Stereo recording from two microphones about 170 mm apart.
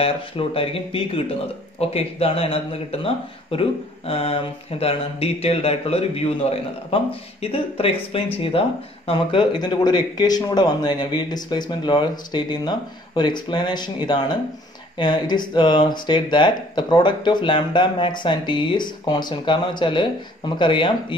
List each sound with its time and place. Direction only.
0.0 s speech: 35° left (ahead or behind)